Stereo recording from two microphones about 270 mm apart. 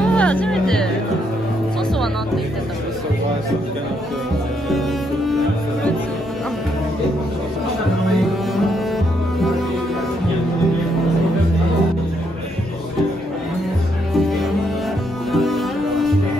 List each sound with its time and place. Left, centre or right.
0.0 s music: centre
4.6 s music: centre
15.3 s music: centre